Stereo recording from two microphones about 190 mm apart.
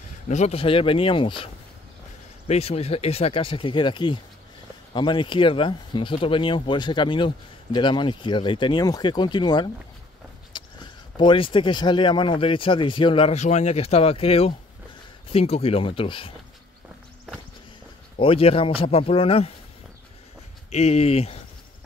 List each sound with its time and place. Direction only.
0.3 s speech: 35° left (ahead or behind)
10.5 s a sound: 25° left (ahead or behind)
11.1 s speech: 25° left (ahead or behind)
18.1 s speech: 30° left (ahead or behind)
20.7 s speech: 35° left (ahead or behind)